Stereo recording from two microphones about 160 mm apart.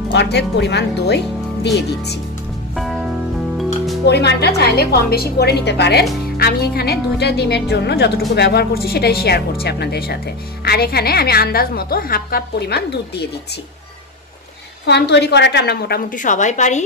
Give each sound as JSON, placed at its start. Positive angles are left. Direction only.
{"t": 0.1, "sound": "speech", "side_deg": 90}
{"t": 2.7, "sound": "music", "side_deg": 0}
{"t": 4.0, "sound": "speech", "side_deg": 90}
{"t": 6.3, "sound": "speech", "side_deg": 75}
{"t": 14.9, "sound": "speech", "side_deg": 90}
{"t": 16.2, "sound": "a woman's voice", "side_deg": 50}